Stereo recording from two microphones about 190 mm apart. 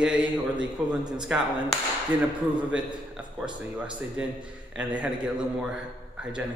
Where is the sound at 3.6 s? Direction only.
5° right (ahead or behind).